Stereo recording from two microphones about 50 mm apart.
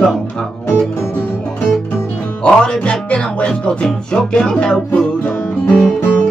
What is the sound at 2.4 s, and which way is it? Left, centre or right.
Music, left.